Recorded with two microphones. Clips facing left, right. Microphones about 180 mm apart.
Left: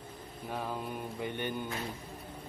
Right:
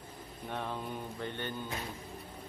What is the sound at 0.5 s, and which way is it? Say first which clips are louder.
Mantra: left 1 dB; 5° left (ahead or behind).